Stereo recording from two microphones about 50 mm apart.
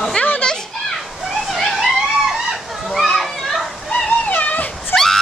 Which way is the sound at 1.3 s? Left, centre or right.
Centre.